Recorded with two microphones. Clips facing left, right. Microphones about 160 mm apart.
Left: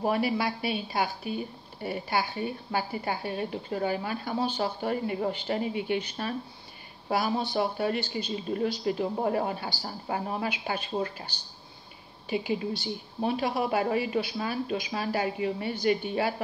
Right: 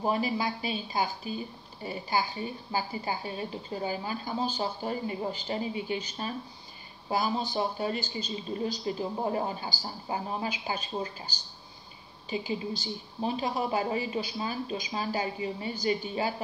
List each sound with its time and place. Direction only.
0.0 s a woman's voice: 65° left (ahead or behind)